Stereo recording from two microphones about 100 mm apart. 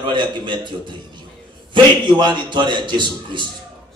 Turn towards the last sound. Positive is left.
turn(degrees=-50)  # may be behind; listen again after turning